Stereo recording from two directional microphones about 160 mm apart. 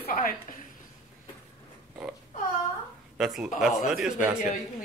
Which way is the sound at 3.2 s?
Centre (ahead or behind).